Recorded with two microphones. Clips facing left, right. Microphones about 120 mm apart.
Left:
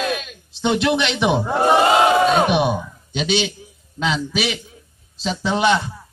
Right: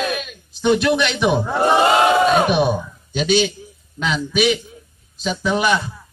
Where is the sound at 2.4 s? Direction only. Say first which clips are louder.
Right 1 dB; 20° left (ahead or behind).